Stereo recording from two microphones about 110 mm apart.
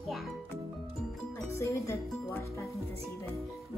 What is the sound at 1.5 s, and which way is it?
Speech, 25° left (ahead or behind).